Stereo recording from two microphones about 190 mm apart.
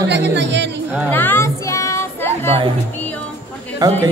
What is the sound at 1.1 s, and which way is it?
Music, 10° left (ahead or behind).